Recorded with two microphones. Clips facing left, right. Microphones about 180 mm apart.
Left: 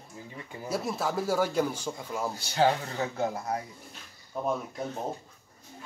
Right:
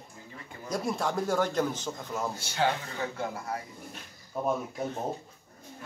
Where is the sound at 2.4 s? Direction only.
35° left (ahead or behind).